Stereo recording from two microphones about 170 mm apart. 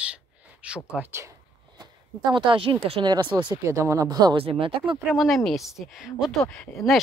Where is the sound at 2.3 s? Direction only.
30° right (ahead or behind).